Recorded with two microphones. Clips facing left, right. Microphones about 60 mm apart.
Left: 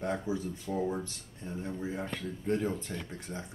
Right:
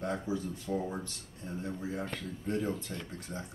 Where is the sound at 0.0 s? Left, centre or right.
Centre.